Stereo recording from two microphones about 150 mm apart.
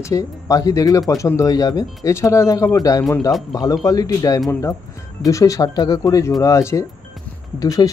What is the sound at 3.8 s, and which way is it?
Speech, 25° left (ahead or behind).